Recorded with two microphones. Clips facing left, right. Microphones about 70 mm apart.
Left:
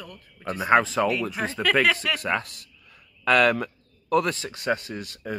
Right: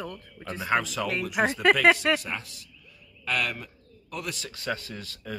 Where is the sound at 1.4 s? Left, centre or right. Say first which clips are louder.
Right 9 dB; right.